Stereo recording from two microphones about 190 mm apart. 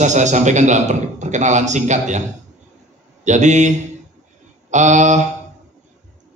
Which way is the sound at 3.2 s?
40° right (ahead or behind).